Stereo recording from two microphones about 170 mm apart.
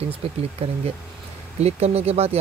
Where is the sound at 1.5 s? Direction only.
40° right (ahead or behind).